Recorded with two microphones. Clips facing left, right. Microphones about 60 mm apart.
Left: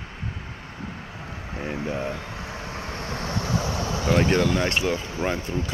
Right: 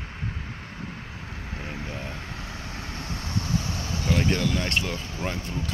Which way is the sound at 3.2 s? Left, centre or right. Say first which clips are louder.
Left 2 dB; left.